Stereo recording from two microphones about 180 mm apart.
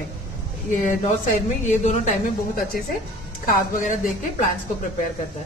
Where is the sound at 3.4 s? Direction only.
50° left (ahead or behind).